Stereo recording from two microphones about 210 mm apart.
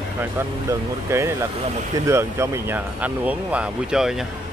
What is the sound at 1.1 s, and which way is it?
Speech, 15° right (ahead or behind).